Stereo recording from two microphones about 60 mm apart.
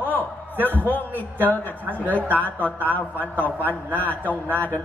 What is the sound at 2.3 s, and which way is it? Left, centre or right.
Speech, right.